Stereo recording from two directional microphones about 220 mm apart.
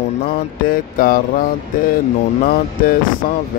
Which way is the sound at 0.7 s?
40° left (ahead or behind).